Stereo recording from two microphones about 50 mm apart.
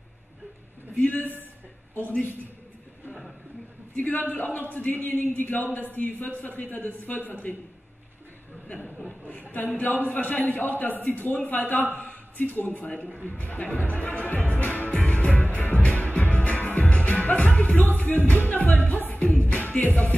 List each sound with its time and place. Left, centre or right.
0.9 s speech: left
3.1 s a sound: centre
4.0 s speech: left
8.8 s chuckle: centre
9.5 s speech: left
14.5 s music: left
18.3 s speech: left
19.0 s music: left